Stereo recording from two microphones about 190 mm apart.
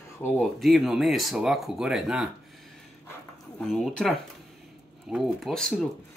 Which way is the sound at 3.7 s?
Centre (ahead or behind).